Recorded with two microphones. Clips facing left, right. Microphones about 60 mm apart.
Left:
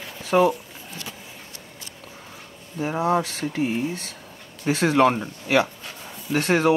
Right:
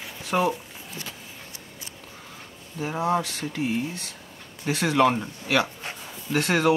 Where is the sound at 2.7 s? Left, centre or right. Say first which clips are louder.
Left 3 dB; centre.